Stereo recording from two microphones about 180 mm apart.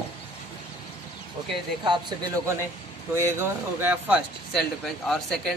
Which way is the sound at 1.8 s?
25° right (ahead or behind).